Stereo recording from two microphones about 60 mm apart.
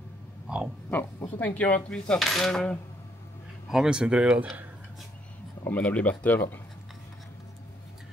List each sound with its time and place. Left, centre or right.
0.8 s speech: left
2.1 s cutlery: centre
3.6 s speech: centre
5.7 s speech: left